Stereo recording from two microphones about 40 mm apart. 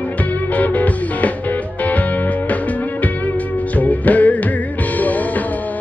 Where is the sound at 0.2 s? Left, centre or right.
Left.